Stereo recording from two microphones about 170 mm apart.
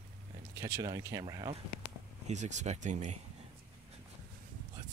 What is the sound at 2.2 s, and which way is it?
Speech, 45° right (ahead or behind).